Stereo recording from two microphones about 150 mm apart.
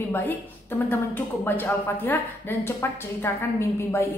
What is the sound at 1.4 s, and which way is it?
Speech, 15° left (ahead or behind).